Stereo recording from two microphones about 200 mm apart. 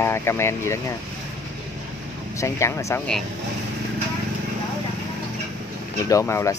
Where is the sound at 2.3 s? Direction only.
15° left (ahead or behind).